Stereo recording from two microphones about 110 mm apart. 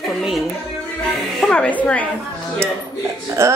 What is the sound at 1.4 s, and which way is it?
Speech, 10° left (ahead or behind).